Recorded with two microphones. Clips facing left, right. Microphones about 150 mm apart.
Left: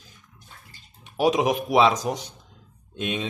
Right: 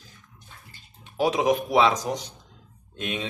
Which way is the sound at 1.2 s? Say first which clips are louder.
Left 1 dB; 15° left (ahead or behind).